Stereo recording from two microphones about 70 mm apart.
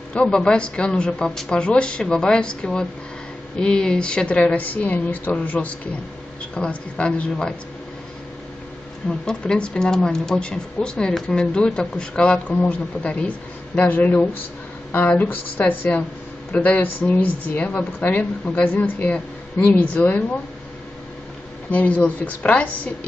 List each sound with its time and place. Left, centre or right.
0.1 s a woman's voice: centre
9.2 s a woman's voice: centre
21.6 s a woman's voice: left